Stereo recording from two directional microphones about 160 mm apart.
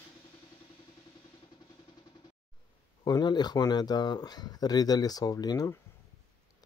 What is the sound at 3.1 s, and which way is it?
Speech, 25° left (ahead or behind).